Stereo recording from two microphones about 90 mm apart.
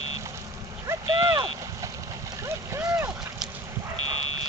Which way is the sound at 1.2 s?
60° right (ahead or behind).